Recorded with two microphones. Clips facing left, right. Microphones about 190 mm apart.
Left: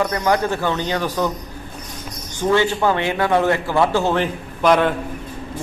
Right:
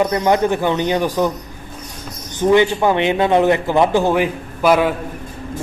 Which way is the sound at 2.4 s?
15° right (ahead or behind).